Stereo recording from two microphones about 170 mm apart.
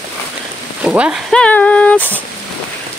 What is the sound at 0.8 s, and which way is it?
Speech, 5° right (ahead or behind).